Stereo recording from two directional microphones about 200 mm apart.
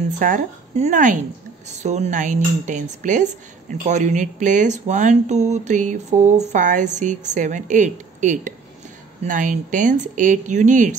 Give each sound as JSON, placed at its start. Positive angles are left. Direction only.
{"t": 0.2, "sound": "speech", "side_deg": -40}